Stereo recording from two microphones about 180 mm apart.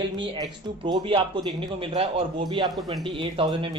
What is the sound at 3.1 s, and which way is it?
Speech, 30° right (ahead or behind).